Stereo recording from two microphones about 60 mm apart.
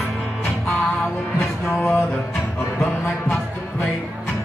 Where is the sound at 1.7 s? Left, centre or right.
Left.